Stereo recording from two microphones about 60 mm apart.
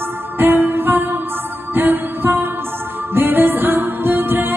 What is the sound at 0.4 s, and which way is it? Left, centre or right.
Music, right.